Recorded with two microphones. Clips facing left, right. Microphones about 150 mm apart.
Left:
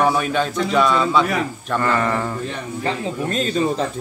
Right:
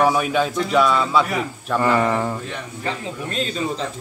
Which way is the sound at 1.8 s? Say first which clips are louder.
Right 2 dB; 15° right (ahead or behind).